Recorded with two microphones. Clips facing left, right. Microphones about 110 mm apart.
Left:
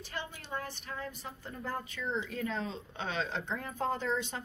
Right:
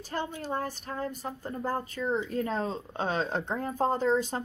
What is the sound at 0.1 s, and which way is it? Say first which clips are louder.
A woman's voice: right 8 dB; 40° right (ahead or behind).